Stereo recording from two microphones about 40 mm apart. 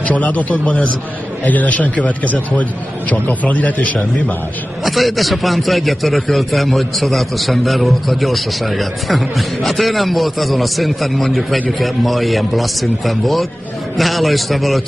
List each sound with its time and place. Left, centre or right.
0.0 s a man's voice: left
4.8 s a man's voice: centre